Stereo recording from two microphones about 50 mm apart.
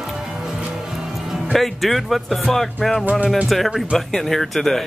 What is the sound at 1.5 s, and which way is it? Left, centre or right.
Speech, centre.